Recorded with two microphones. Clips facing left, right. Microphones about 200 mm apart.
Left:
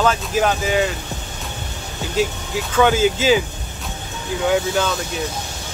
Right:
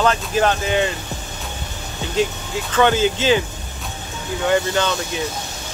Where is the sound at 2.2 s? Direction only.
5° left (ahead or behind).